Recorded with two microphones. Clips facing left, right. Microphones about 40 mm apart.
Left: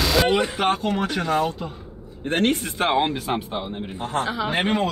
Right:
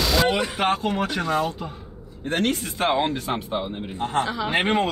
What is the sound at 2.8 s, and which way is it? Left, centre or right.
Speech, centre.